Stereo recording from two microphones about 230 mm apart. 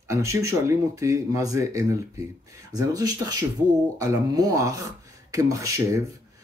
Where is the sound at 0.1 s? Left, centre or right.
Centre.